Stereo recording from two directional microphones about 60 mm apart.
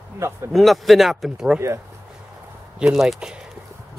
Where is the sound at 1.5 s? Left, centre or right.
Right.